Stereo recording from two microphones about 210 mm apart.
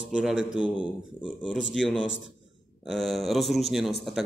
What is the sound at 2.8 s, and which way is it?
Speech, centre (ahead or behind).